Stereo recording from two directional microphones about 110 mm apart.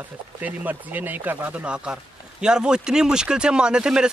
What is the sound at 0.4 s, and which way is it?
Speech, 15° right (ahead or behind).